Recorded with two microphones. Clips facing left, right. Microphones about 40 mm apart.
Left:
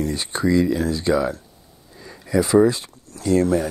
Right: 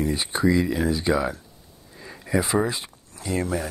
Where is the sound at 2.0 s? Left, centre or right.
Centre.